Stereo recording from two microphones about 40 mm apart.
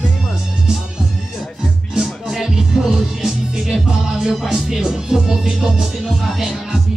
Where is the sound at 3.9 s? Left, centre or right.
Centre.